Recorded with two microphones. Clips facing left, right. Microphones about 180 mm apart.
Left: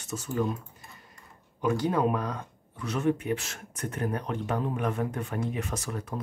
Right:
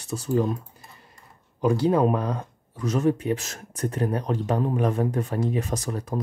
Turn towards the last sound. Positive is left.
turn(degrees=-35)  # may be behind; listen again after turning